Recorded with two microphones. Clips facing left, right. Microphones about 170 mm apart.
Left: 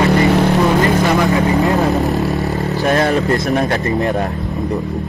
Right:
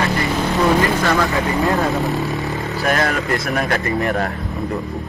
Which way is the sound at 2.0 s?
Centre (ahead or behind).